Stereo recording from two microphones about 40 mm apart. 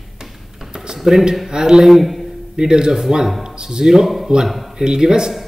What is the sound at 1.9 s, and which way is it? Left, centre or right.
Speech, centre.